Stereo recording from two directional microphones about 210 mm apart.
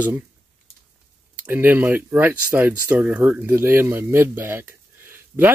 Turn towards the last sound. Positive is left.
turn(degrees=-10)  # may be behind; listen again after turning